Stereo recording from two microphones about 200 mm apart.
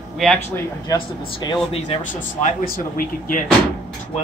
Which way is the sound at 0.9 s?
20° left (ahead or behind).